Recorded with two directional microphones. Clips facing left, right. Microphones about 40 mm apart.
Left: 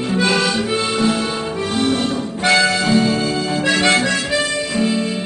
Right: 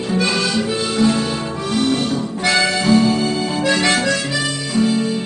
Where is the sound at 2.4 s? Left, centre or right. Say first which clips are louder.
Left 2 dB; left.